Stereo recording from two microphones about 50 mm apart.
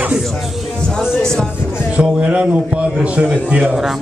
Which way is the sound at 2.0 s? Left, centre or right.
Right.